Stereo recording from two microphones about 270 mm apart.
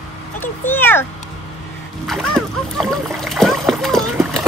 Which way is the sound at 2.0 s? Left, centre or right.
Centre.